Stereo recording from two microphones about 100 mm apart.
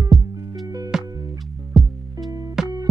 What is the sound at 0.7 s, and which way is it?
Music, 40° right (ahead or behind).